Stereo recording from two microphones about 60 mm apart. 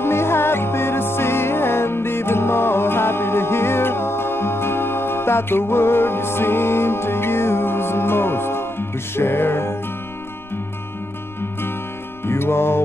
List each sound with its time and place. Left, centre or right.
0.0 s music: left
12.3 s music: left